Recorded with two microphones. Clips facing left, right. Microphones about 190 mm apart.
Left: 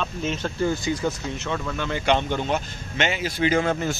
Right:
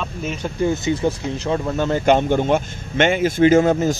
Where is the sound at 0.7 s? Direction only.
25° right (ahead or behind).